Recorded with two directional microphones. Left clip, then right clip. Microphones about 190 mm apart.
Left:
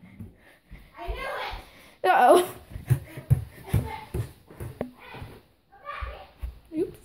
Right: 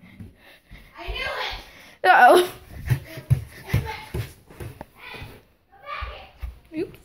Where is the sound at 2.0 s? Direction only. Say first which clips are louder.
Right 4 dB; 5° left (ahead or behind).